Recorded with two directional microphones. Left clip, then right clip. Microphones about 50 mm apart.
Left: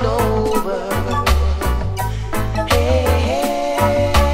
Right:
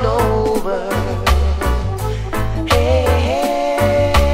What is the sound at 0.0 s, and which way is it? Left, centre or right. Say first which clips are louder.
Music: right 2 dB; left.